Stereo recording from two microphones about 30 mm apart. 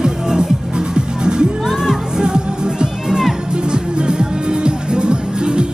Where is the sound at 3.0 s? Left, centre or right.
Centre.